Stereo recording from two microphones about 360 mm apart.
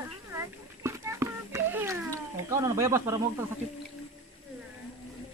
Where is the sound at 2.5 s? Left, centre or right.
Centre.